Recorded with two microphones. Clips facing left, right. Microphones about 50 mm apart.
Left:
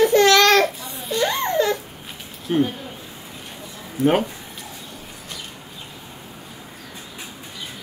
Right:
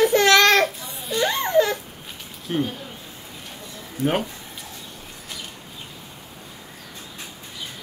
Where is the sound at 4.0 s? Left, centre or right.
Centre.